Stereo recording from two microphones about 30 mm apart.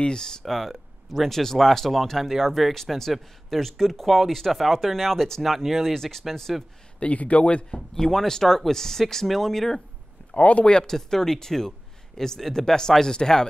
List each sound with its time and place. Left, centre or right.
0.0 s speech: left
0.5 s speech: centre
7.0 s speech: left
7.7 s speech: centre
10.3 s speech: left
10.6 s speech: left
10.9 s speech: centre